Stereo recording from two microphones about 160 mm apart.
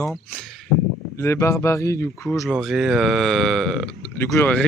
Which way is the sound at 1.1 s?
20° left (ahead or behind).